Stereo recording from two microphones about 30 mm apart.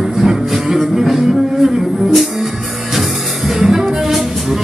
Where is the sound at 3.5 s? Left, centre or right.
Centre.